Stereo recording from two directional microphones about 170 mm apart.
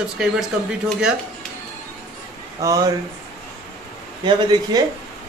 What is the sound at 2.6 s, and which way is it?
Speech, 20° right (ahead or behind).